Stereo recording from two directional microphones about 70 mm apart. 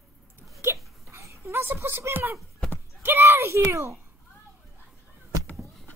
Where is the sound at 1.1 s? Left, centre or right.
Right.